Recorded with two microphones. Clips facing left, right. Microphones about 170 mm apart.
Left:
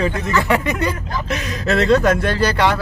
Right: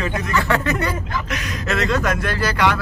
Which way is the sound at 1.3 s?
30° left (ahead or behind).